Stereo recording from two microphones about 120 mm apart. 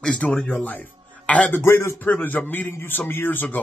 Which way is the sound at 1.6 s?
20° left (ahead or behind).